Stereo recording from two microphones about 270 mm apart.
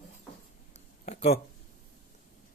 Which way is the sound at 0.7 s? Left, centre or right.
Left.